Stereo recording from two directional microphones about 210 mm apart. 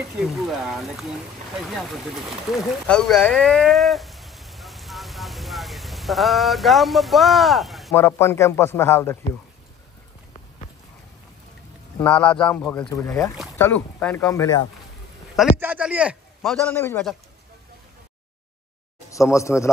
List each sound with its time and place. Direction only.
0.5 s a man's voice: centre (ahead or behind)
2.5 s a sound: centre (ahead or behind)
7.9 s speech: 10° left (ahead or behind)
12.0 s a man's voice: 5° left (ahead or behind)
15.3 s a man's voice: 10° right (ahead or behind); by 17.1 s 10° left (ahead or behind)
19.0 s speech: 15° left (ahead or behind)